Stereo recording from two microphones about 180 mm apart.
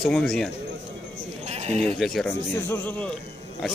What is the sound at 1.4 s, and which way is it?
Sheep, 35° right (ahead or behind).